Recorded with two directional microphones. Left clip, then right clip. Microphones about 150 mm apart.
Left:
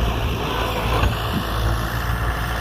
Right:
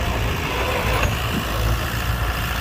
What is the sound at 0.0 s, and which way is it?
Vehicle, 60° right (ahead or behind).